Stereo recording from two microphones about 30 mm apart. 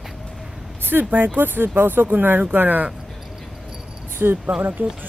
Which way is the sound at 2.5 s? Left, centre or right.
Right.